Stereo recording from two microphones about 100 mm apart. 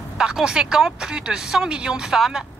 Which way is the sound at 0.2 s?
10° right (ahead or behind).